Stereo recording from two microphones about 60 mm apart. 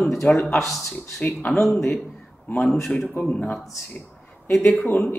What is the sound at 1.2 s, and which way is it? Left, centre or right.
Speech, left.